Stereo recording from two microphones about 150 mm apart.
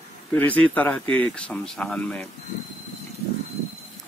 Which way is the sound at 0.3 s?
10° left (ahead or behind).